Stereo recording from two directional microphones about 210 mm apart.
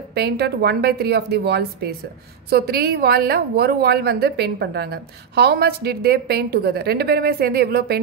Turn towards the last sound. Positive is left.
turn(degrees=-50)  # may be behind; listen again after turning